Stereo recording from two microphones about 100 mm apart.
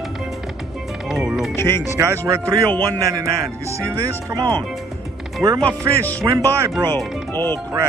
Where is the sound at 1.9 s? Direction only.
30° right (ahead or behind).